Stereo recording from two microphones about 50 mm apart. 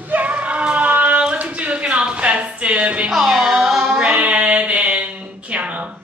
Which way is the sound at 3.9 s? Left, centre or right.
Centre.